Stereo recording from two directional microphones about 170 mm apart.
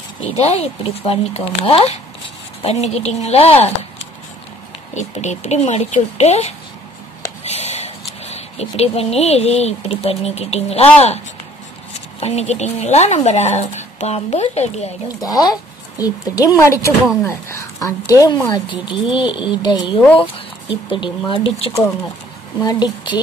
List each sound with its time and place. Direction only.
0.3 s a woman's voice: 40° left (ahead or behind)
4.9 s a woman's voice: 45° left (ahead or behind)
12.2 s a woman's voice: 40° left (ahead or behind)
15.2 s a woman's voice: 20° left (ahead or behind)